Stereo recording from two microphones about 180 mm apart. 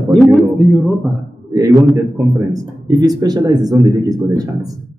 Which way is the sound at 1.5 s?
15° right (ahead or behind).